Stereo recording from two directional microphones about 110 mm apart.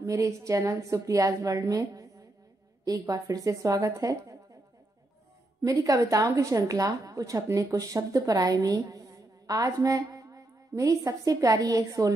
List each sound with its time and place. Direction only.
0.0 s a woman's voice: 30° right (ahead or behind)
5.6 s a woman's voice: 30° right (ahead or behind)